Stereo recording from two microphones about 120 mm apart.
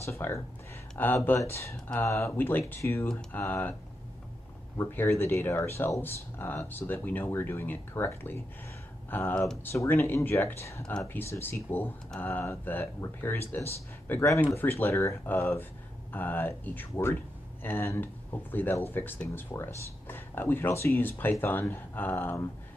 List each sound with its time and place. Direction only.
0.0 s speech: 25° left (ahead or behind)
4.7 s speech: 20° left (ahead or behind)
10.8 s speech: 5° left (ahead or behind)
11.4 s speech: 15° left (ahead or behind)